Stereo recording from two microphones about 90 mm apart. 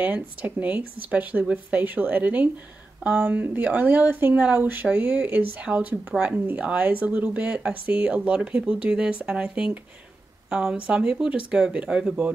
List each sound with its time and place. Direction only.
0.0 s speech: 20° right (ahead or behind)